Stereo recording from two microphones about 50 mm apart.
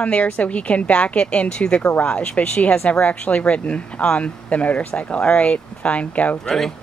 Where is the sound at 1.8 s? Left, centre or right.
Left.